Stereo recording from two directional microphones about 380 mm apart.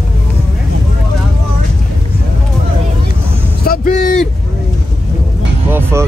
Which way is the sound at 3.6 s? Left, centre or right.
Left.